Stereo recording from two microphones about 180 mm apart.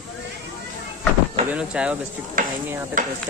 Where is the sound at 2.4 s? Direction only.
50° right (ahead or behind).